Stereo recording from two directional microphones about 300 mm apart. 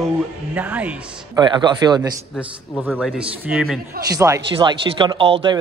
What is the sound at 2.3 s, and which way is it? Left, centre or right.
A woman's voice, centre.